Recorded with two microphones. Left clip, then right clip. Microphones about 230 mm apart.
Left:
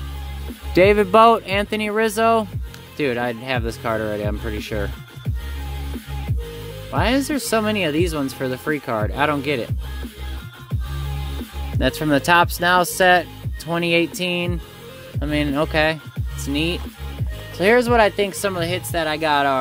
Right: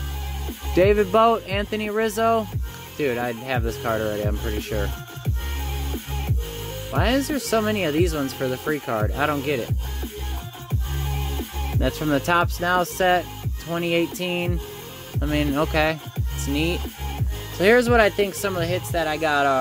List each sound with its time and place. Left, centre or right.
0.7 s speech: centre
6.9 s speech: centre
11.8 s speech: centre